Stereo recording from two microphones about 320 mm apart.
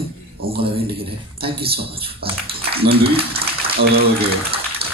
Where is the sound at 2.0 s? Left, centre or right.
Centre.